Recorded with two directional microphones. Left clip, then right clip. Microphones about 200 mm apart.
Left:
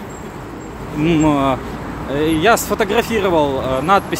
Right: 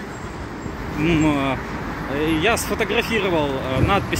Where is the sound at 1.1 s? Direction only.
25° left (ahead or behind).